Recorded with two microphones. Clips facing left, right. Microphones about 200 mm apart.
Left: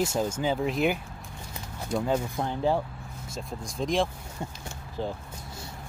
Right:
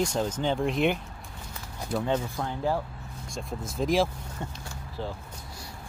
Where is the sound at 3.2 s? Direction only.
Centre (ahead or behind).